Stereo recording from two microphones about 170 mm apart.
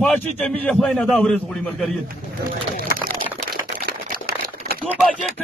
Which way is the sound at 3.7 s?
55° right (ahead or behind).